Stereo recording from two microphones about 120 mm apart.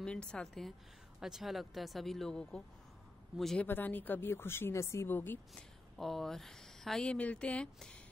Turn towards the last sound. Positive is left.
turn(degrees=10)  # may be behind; listen again after turning